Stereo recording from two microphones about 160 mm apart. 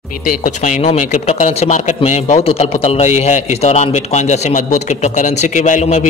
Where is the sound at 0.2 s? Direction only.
55° left (ahead or behind).